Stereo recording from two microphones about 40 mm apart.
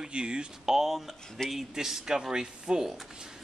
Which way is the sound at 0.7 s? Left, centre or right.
Centre.